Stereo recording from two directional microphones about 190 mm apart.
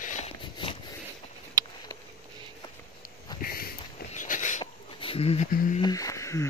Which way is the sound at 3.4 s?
50° left (ahead or behind).